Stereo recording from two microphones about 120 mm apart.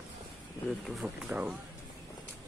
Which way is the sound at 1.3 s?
10° right (ahead or behind).